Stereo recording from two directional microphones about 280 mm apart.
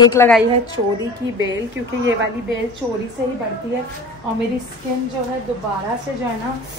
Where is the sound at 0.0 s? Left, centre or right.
Centre.